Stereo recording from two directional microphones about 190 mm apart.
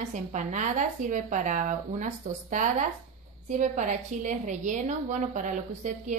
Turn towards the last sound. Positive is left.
turn(degrees=-40)  # may be behind; listen again after turning